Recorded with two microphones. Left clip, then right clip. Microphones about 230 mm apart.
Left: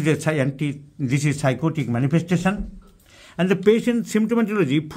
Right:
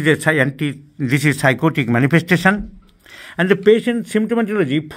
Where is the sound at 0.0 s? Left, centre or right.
Centre.